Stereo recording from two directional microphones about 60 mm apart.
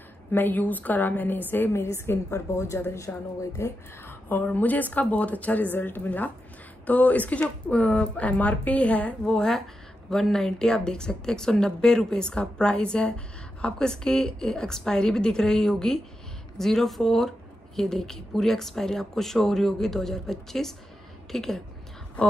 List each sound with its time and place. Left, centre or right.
0.3 s a woman's voice: left
2.3 s speech: left
4.1 s a woman's voice: left
9.2 s a woman's voice: centre